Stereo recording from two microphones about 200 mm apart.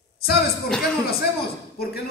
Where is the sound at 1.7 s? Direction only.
50° left (ahead or behind).